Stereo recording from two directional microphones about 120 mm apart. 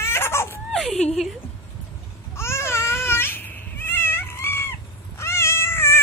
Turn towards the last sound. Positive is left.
turn(degrees=20)  # may be behind; listen again after turning